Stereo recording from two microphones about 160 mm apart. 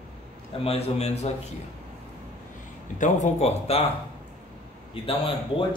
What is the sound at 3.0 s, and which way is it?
Speech, 45° left (ahead or behind).